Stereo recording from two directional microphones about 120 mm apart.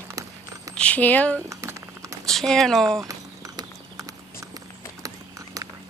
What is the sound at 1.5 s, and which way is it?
Typing, 25° right (ahead or behind).